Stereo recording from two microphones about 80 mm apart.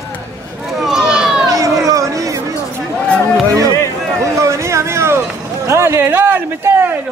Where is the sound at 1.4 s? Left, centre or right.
Right.